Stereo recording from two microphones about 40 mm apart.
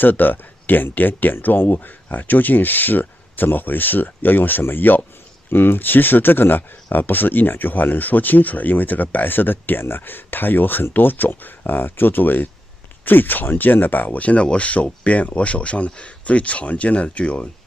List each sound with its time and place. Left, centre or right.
0.0 s speech: left